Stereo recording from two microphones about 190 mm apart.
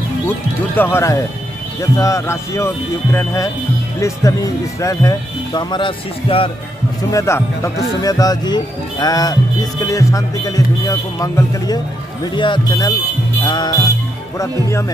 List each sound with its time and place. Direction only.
0.7 s speech: 10° left (ahead or behind); by 6.5 s 30° left (ahead or behind)
7.1 s speech: 15° left (ahead or behind)